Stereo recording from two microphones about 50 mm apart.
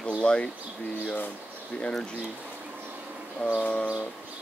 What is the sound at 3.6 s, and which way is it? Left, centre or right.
Speech, left.